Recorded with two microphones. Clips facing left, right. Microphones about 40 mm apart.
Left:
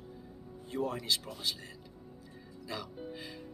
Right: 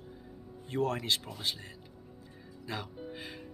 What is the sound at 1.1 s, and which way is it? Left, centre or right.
Speech, right.